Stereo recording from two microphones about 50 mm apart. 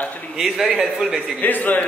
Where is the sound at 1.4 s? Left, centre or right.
Left.